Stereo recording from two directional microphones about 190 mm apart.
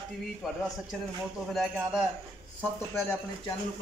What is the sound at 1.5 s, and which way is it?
Speech, 5° right (ahead or behind).